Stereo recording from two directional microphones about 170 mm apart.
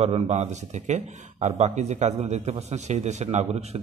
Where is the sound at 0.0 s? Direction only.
40° right (ahead or behind).